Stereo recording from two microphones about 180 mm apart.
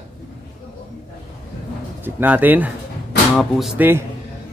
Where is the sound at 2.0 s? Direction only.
10° right (ahead or behind).